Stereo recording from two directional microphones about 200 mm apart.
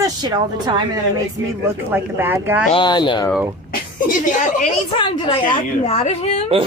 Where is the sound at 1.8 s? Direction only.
10° right (ahead or behind).